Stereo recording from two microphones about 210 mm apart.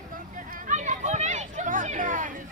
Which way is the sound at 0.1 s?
40° right (ahead or behind).